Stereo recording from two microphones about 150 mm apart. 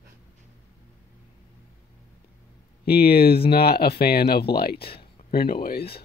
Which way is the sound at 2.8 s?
90° left.